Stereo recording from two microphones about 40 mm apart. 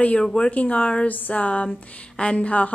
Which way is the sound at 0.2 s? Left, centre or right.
Left.